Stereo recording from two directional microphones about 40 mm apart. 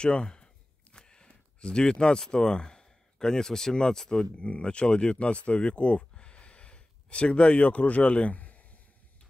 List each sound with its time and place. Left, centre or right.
0.0 s speech: left